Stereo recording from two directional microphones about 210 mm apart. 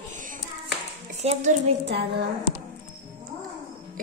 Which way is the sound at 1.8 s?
55° right (ahead or behind).